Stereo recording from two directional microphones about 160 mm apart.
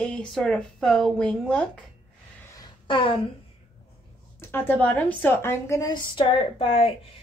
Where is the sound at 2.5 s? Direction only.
30° left (ahead or behind).